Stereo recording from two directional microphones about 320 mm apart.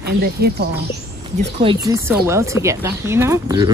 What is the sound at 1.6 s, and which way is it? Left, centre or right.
Speech, centre.